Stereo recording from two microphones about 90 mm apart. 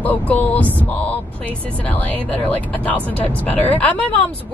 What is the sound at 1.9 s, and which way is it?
Speech, 15° left (ahead or behind).